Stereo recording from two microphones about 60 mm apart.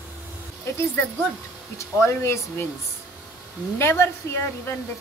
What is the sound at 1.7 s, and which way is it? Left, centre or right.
Speech, left.